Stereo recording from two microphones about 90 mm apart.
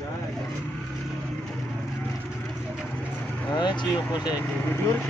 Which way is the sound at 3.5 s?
55° left (ahead or behind).